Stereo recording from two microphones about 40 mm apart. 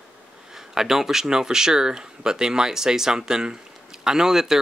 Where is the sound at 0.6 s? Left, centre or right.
Centre.